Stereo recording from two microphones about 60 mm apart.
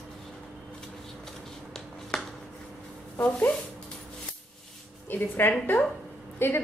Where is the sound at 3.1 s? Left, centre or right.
Left.